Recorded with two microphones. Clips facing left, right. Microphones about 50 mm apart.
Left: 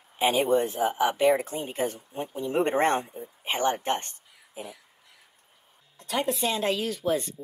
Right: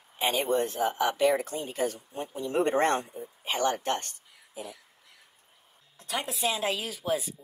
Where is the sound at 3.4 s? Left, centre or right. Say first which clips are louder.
Left 2 dB; left.